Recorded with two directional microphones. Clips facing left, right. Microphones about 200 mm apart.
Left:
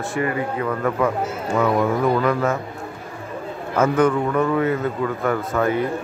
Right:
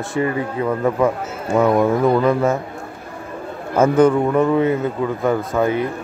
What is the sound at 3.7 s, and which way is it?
Speech, 25° right (ahead or behind).